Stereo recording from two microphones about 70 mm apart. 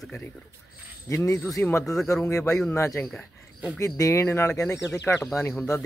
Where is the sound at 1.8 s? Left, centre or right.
Centre.